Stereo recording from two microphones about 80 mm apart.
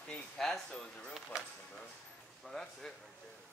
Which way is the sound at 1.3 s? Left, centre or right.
Centre.